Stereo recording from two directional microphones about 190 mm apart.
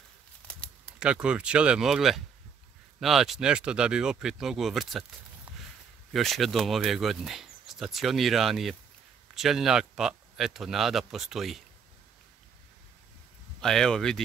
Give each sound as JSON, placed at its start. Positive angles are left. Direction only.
{"t": 0.5, "sound": "a sound", "side_deg": 5}
{"t": 0.9, "sound": "speech", "side_deg": -5}
{"t": 6.1, "sound": "speech", "side_deg": 0}
{"t": 13.6, "sound": "speech", "side_deg": 5}